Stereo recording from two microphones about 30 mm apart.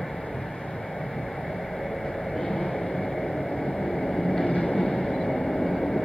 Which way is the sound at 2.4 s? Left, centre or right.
Left.